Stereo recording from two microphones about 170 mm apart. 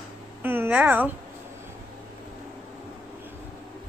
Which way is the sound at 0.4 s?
10° right (ahead or behind).